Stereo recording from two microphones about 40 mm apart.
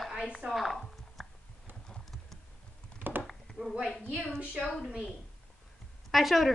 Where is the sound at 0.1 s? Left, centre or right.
Centre.